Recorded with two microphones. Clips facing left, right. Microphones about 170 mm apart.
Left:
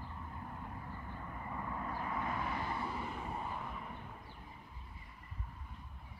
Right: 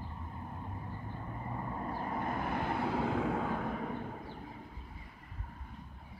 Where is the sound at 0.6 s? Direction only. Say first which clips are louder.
Right 3 dB; 25° right (ahead or behind); by 4.5 s 65° right (ahead or behind).